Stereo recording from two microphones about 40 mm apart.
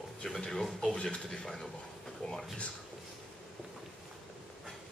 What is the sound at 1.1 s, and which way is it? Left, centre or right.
Speech, centre.